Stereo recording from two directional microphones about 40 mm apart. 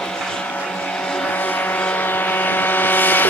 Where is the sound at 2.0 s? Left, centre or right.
Left.